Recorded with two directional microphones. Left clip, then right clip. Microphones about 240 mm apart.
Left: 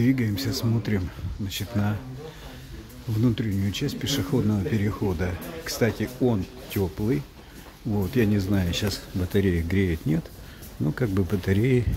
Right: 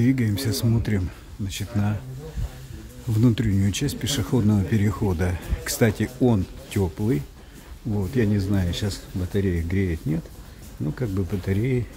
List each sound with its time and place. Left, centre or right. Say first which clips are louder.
0.0 s speech: right 1 dB; centre
3.2 s speech: right 3 dB; centre